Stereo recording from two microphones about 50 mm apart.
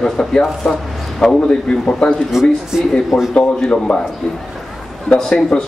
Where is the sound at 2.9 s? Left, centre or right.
Centre.